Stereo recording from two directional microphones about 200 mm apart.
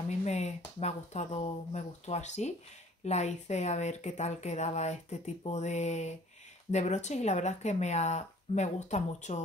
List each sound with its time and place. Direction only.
0.2 s speech: 35° left (ahead or behind)